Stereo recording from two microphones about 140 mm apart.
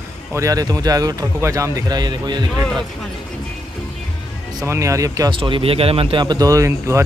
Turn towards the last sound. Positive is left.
turn(degrees=-20)  # may be behind; listen again after turning